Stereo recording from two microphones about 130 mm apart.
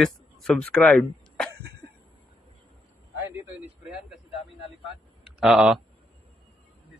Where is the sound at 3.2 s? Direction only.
15° right (ahead or behind).